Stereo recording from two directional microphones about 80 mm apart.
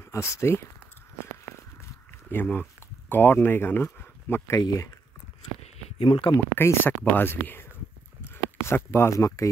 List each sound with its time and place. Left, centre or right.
0.0 s speech: left
2.3 s speech: left
4.6 s speech: left
6.0 s speech: left
6.3 s speech: left
8.6 s speech: left